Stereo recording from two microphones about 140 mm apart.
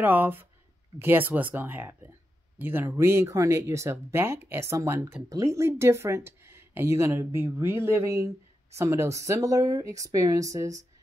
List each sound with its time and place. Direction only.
0.0 s speech: 15° right (ahead or behind)